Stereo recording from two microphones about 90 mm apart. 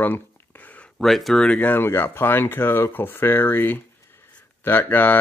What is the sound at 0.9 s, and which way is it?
Speech, centre (ahead or behind).